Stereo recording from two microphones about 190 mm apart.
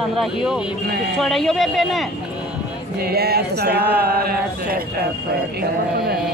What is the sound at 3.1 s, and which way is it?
Speech, 55° right (ahead or behind).